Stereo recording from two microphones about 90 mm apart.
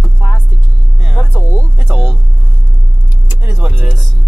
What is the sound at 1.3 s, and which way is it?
Speech, 25° left (ahead or behind).